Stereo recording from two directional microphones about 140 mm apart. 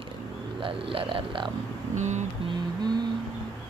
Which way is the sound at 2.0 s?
55° right (ahead or behind).